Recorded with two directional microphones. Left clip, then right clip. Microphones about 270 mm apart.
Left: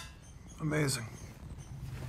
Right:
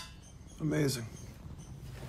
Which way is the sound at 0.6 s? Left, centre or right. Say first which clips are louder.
Right 1 dB; centre.